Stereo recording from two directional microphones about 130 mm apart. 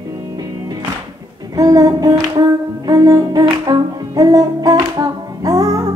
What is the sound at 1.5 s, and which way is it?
Music, 30° right (ahead or behind).